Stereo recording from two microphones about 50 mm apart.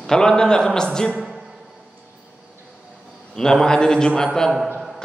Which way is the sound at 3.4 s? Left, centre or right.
Centre.